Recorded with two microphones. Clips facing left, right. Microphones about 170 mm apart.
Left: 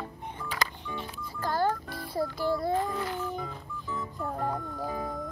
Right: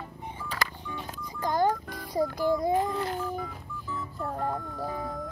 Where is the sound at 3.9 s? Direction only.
Centre (ahead or behind).